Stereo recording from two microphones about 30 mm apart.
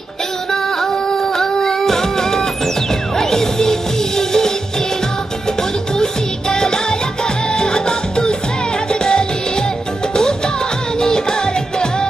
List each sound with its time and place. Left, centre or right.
0.5 s music: centre
6.5 s music: left
11.0 s music: left